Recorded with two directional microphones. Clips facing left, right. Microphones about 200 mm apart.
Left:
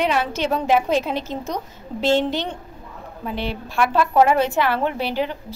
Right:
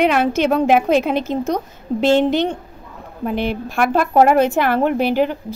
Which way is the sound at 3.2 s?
50° right (ahead or behind).